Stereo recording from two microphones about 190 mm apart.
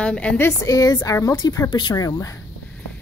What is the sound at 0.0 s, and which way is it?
A woman's voice, 5° left (ahead or behind).